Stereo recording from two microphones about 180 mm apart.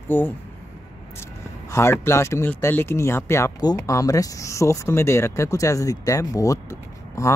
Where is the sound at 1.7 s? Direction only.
15° left (ahead or behind).